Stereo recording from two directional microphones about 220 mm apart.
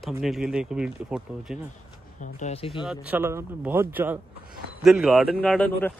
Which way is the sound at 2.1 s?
35° left (ahead or behind).